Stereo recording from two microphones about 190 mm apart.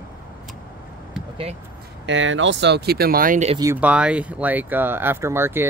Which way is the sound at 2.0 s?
80° right.